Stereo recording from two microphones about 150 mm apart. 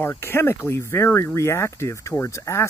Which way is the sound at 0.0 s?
15° left (ahead or behind).